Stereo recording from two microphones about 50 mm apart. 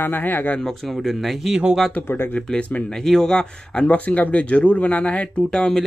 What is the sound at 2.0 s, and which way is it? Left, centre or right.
Speech, left.